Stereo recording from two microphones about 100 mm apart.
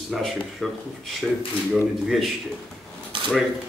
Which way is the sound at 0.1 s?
Centre (ahead or behind).